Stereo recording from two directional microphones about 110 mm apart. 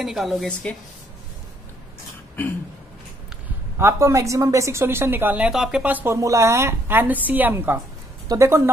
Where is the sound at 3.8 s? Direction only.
25° right (ahead or behind).